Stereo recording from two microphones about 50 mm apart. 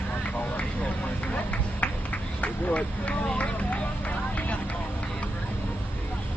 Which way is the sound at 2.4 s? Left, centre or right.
Left.